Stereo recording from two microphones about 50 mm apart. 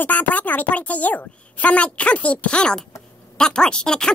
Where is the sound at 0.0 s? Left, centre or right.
Left.